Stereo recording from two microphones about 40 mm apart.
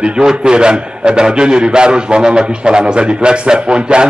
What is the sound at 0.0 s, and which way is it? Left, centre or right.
A man's voice, right.